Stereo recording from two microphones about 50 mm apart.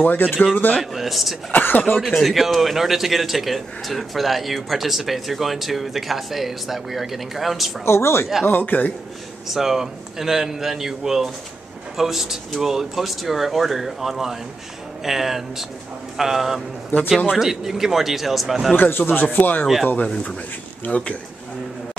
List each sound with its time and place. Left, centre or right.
0.0 s speech: left
0.7 s speech: centre
1.5 s speech: left
2.2 s speech: centre
7.8 s speech: left
8.5 s speech: left
9.5 s a man's voice: centre
18.8 s speech: left
20.8 s a man's voice: left